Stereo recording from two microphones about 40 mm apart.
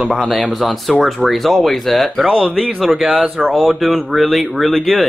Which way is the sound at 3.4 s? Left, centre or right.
Centre.